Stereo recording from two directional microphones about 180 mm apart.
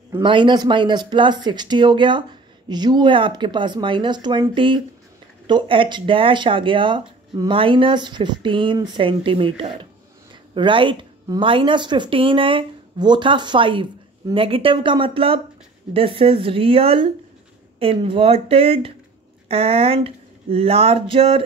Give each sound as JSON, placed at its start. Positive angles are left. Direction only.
{"t": 0.2, "sound": "speech", "side_deg": -25}